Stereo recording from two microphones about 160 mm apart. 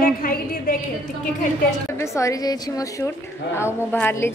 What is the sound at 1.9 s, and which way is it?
A woman's voice, 20° left (ahead or behind).